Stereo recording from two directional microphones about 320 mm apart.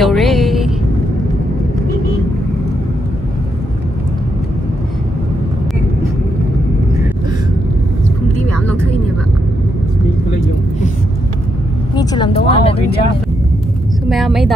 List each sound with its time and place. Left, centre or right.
0.0 s a sound: centre
11.9 s vehicle: centre
14.0 s vehicle: centre